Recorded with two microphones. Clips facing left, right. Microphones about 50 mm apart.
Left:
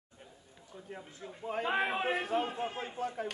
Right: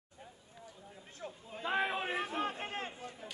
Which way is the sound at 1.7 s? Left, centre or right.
Centre.